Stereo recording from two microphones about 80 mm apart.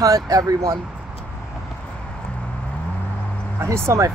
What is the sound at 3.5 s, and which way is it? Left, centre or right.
Speech, right.